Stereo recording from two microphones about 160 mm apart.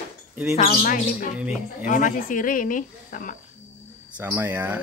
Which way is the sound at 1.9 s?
55° left (ahead or behind).